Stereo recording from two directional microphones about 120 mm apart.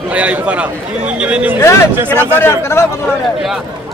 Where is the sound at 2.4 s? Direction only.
20° left (ahead or behind).